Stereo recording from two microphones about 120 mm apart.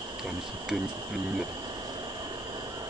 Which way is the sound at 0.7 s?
10° right (ahead or behind).